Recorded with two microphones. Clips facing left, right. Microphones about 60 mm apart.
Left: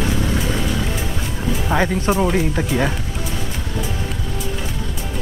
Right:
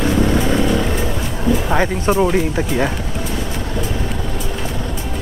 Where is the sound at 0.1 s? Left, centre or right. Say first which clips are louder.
Right 6 dB; right.